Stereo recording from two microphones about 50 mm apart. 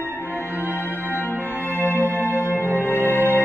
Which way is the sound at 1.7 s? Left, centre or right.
Left.